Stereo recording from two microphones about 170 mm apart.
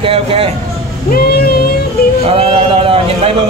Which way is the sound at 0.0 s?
35° right (ahead or behind).